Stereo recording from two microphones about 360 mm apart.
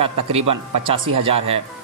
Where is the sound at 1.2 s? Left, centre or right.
Centre.